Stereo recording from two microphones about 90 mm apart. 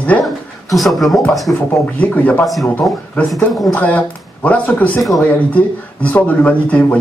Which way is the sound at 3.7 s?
15° left (ahead or behind).